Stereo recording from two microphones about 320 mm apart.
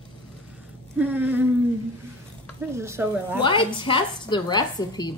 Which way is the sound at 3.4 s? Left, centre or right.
Centre.